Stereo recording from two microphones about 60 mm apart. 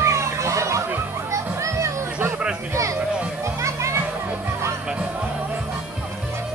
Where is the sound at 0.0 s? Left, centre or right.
Right.